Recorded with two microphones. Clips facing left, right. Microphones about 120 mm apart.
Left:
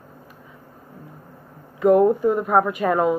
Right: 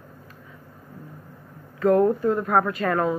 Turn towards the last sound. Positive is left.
turn(degrees=15)  # may be behind; listen again after turning